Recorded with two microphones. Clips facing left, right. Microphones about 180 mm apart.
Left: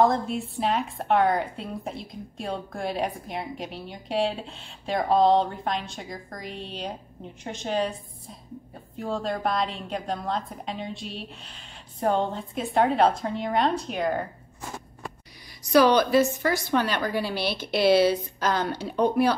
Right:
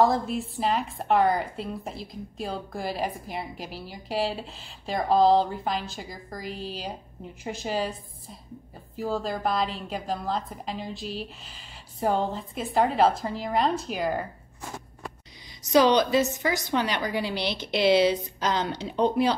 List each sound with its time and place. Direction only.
0.1 s a woman's voice: centre (ahead or behind)
15.6 s a woman's voice: 20° right (ahead or behind)